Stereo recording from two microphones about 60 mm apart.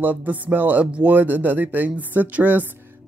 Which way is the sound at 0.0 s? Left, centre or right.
Right.